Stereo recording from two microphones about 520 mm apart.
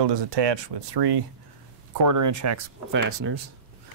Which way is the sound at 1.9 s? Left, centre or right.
Right.